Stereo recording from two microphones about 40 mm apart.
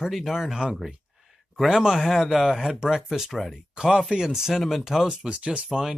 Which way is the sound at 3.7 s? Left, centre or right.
Centre.